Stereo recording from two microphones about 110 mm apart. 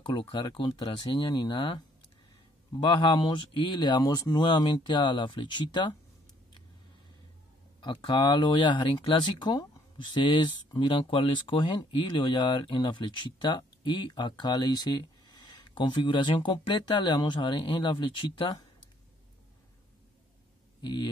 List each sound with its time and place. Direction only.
0.0 s speech: 50° left (ahead or behind)
4.0 s speech: 35° left (ahead or behind)
7.8 s speech: 50° left (ahead or behind)
20.8 s speech: 45° left (ahead or behind)